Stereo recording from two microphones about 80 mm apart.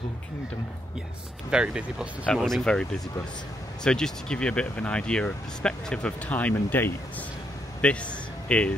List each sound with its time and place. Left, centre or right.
1.5 s speech: centre
2.3 s speech: centre; by 7.2 s left
7.8 s speech: centre